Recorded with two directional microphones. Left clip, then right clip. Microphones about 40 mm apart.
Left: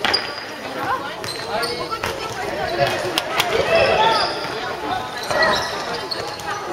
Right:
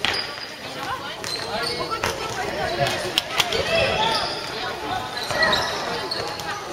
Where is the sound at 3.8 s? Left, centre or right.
Right.